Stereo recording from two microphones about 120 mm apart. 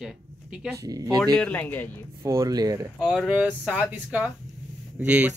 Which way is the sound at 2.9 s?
5° left (ahead or behind).